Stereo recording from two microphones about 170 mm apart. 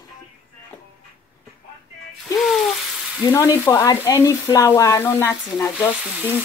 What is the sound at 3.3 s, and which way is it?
Frying, 15° left (ahead or behind).